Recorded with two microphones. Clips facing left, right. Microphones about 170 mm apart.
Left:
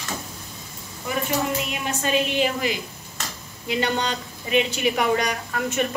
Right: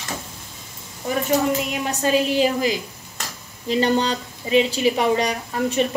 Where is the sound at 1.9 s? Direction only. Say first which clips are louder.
Right 4 dB; 35° right (ahead or behind).